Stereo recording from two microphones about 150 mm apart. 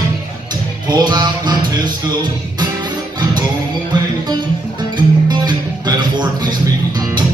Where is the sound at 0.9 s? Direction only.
30° right (ahead or behind).